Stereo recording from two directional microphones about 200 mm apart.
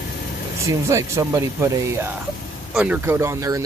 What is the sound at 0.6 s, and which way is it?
Speech, 15° right (ahead or behind).